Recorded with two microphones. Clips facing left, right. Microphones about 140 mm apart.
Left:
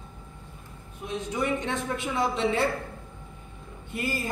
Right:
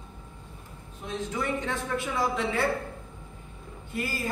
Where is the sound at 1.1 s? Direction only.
15° left (ahead or behind).